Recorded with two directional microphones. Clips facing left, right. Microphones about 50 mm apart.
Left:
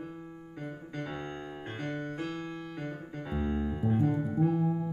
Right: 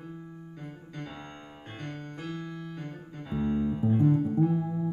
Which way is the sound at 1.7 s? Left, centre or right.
Centre.